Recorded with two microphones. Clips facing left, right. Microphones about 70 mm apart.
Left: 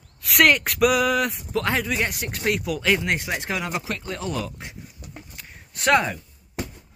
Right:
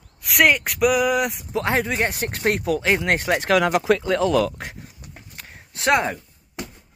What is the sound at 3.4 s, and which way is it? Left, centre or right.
Speech, right.